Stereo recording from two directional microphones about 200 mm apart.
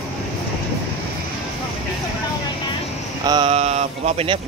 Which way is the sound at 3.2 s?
20° right (ahead or behind).